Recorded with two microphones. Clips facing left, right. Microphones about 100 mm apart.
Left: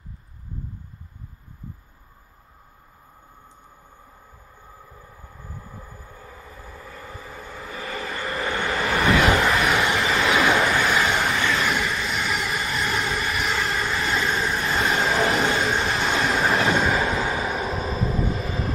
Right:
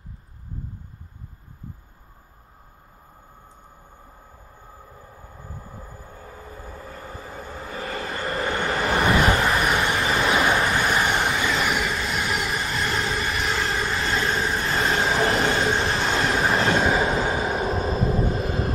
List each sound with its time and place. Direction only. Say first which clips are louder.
4.9 s train: right 1 dB; 35° right (ahead or behind)
9.4 s vehicle: left 1 dB; 30° right (ahead or behind)
9.8 s train: left 1 dB; 30° right (ahead or behind)
10.8 s vehicle: even; 15° right (ahead or behind)
11.5 s train: even; 5° right (ahead or behind)
17.0 s vehicle: right 1 dB; 30° right (ahead or behind)